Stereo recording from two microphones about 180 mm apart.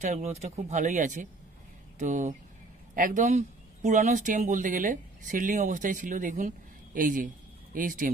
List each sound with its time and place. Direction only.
0.0 s speech: 40° right (ahead or behind)